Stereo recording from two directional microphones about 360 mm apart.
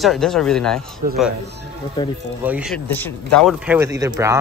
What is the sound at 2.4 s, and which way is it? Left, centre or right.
Speech, centre.